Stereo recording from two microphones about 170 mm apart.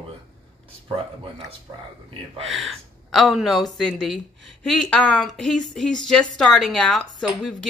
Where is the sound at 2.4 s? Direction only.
Centre (ahead or behind).